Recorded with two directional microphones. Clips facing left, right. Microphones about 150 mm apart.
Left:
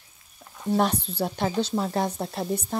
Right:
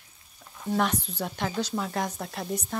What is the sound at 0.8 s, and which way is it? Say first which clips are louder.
Speech: left 2 dB; 30° left (ahead or behind).